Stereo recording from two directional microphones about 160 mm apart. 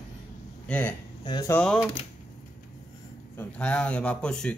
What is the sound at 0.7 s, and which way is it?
Speech, 10° left (ahead or behind).